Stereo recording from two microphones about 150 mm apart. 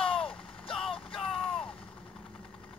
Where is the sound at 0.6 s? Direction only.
5° left (ahead or behind).